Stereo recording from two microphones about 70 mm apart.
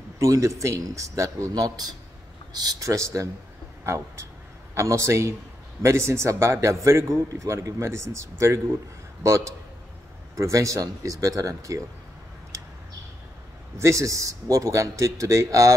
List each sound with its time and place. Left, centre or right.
0.2 s a man's voice: right
1.5 s a man's voice: right
2.9 s a man's voice: right
4.7 s a man's voice: right
13.7 s a man's voice: right